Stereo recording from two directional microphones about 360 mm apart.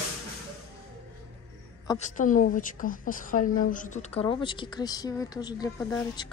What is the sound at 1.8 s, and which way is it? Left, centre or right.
A woman's voice, centre.